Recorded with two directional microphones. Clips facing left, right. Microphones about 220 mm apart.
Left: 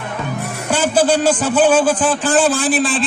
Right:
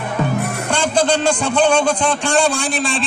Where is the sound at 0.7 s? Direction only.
5° left (ahead or behind).